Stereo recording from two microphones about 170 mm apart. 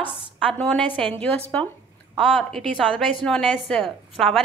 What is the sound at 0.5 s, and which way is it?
A woman's voice, 5° left (ahead or behind).